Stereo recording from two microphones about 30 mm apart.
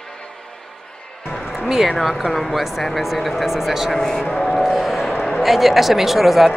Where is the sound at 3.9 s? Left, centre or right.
Centre.